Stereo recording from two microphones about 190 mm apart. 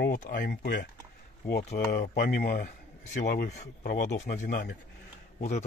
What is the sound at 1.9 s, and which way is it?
Speech, 55° left (ahead or behind).